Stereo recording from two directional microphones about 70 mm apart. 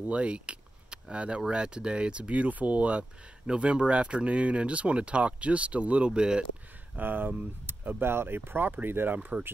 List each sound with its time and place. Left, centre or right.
0.0 s speech: centre
7.0 s speech: right